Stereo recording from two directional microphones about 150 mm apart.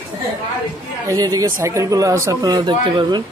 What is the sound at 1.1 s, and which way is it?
Speech, 25° right (ahead or behind).